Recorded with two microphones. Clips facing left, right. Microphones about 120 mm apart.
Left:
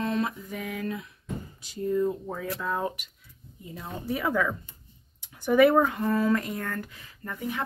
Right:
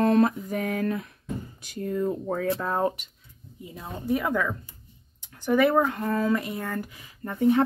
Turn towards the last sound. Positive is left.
turn(degrees=-25)  # may be behind; listen again after turning